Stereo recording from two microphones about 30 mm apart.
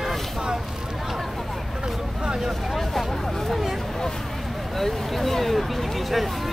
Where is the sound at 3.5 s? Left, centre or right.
Centre.